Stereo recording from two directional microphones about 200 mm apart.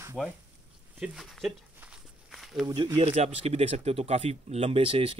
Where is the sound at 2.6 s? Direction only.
20° right (ahead or behind).